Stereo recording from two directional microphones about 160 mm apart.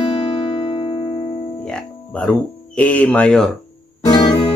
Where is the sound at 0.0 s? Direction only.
35° left (ahead or behind).